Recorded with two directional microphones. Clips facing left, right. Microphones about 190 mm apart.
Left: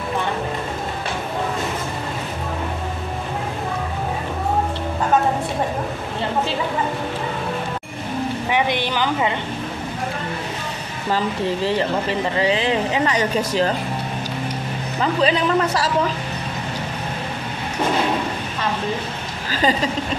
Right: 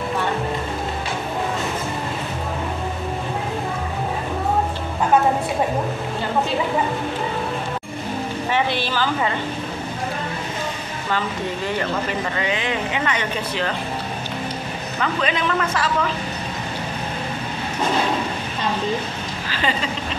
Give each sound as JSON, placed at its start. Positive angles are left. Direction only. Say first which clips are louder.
{"t": 8.5, "sound": "a sound", "louder": "even", "side_deg": 15}
{"t": 11.1, "sound": "speech", "louder": "left 4 dB", "side_deg": 30}
{"t": 15.0, "sound": "speech", "louder": "left 4 dB", "side_deg": 35}